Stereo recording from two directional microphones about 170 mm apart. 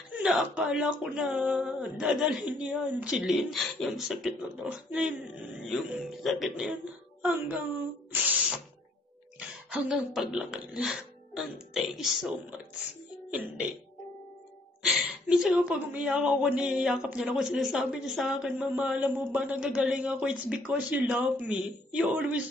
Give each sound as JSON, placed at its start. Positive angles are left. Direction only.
{"t": 0.2, "sound": "speech", "side_deg": -5}
{"t": 9.4, "sound": "speech", "side_deg": -5}
{"t": 15.0, "sound": "speech", "side_deg": -5}